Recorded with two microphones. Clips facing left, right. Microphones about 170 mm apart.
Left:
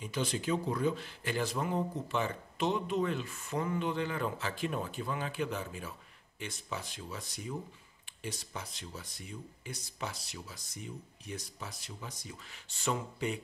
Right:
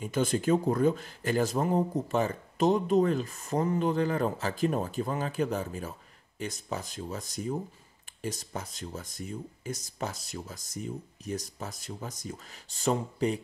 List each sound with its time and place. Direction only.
0.0 s speech: 50° right (ahead or behind)